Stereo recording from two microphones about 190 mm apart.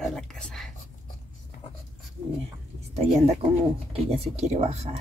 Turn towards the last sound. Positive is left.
turn(degrees=-35)  # may be behind; listen again after turning